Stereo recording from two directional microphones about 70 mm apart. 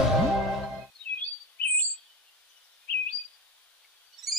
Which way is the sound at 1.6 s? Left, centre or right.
Left.